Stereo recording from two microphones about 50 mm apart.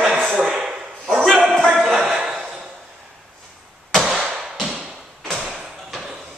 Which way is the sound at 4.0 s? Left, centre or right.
Centre.